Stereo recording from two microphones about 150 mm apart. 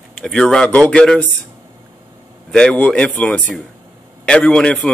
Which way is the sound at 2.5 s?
5° left (ahead or behind).